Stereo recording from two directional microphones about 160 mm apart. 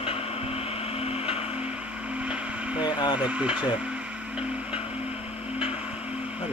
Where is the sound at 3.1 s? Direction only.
5° right (ahead or behind).